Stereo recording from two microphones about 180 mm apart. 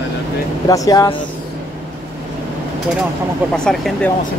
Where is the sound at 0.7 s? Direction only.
20° left (ahead or behind).